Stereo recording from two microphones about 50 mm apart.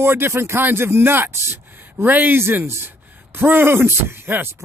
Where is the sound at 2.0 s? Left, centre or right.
Right.